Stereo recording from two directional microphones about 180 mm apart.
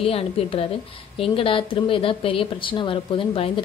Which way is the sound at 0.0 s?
30° left (ahead or behind).